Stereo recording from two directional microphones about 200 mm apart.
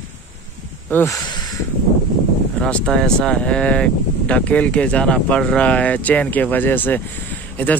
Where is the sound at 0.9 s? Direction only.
10° left (ahead or behind).